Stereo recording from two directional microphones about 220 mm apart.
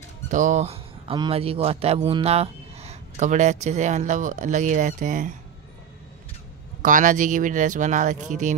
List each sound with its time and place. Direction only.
0.3 s speech: 35° right (ahead or behind)
6.8 s speech: 35° right (ahead or behind)